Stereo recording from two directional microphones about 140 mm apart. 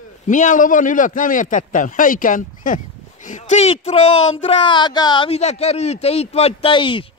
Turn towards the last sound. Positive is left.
turn(degrees=35)  # may be behind; listen again after turning